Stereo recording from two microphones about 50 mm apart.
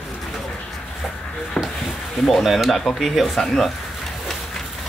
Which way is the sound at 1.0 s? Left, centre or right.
Centre.